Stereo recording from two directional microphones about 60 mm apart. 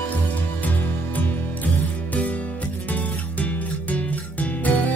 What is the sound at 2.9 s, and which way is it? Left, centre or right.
Music, left.